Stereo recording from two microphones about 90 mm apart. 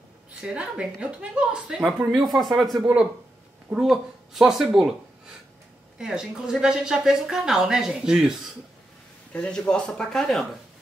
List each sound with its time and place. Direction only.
0.4 s speech: 10° right (ahead or behind)
3.8 s speech: 5° right (ahead or behind)
9.3 s speech: 10° left (ahead or behind)